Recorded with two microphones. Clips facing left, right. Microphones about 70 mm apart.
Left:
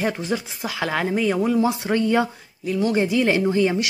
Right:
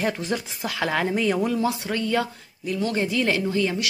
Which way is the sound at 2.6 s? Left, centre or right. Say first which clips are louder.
Left 4 dB; centre.